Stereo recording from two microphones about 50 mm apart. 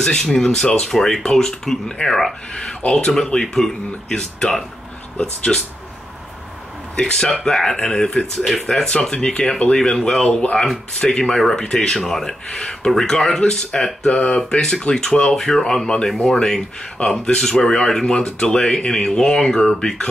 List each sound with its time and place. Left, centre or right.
0.0 s speech: centre
7.0 s speech: centre
9.1 s speech: centre